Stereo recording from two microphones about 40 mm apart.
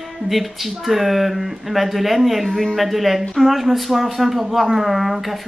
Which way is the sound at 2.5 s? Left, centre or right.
Centre.